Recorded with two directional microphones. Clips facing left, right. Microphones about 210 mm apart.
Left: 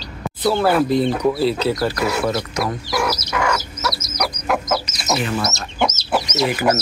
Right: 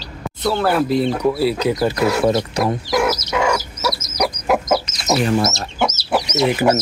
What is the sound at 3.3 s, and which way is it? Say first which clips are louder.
Chicken: right 3 dB; 15° right (ahead or behind).